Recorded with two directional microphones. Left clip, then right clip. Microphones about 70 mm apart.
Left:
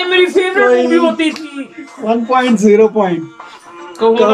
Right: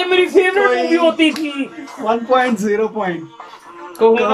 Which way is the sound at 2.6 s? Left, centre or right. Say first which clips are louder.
Left 9 dB; left.